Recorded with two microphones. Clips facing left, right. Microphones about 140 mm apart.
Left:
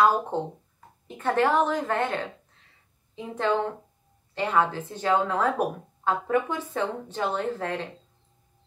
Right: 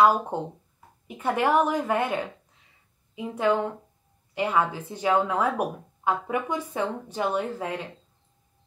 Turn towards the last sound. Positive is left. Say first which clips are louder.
# even
turn(degrees=-10)  # may be behind; listen again after turning